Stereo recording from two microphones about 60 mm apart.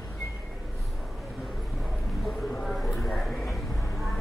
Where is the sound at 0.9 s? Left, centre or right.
Centre.